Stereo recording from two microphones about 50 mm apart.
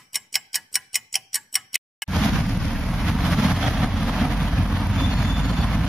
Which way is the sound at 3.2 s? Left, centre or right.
Centre.